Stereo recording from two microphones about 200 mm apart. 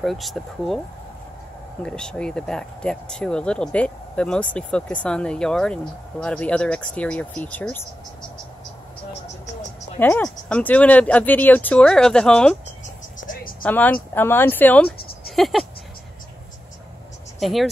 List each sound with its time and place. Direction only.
0.0 s speech: centre (ahead or behind)
1.8 s speech: 5° left (ahead or behind)
9.9 s speech: 10° left (ahead or behind)
13.2 s a sound: 45° left (ahead or behind)
13.6 s speech: 10° left (ahead or behind)
14.9 s a sound: 50° left (ahead or behind)
15.3 s speech: centre (ahead or behind)
17.4 s speech: centre (ahead or behind)